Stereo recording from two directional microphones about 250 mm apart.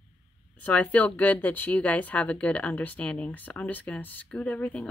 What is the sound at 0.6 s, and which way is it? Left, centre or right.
Speech, centre.